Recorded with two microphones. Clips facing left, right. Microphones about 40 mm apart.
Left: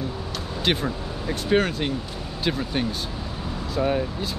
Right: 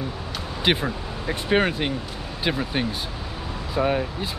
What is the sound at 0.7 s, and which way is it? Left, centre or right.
Speech, centre.